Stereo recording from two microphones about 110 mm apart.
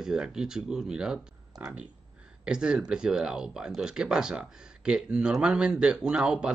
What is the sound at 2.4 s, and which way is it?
Speech, 10° right (ahead or behind).